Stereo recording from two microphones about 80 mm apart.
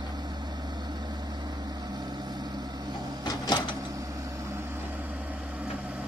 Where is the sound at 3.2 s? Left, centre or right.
Left.